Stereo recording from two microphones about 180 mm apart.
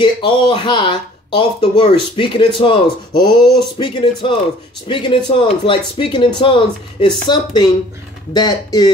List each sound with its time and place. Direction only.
0.0 s speech: 25° left (ahead or behind)